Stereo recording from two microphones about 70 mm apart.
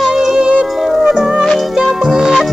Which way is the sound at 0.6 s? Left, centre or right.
Centre.